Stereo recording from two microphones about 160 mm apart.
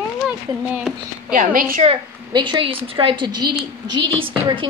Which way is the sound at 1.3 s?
60° right (ahead or behind).